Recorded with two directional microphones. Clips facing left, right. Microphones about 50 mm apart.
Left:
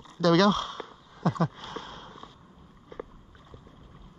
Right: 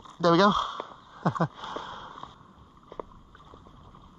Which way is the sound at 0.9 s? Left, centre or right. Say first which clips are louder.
Even; right.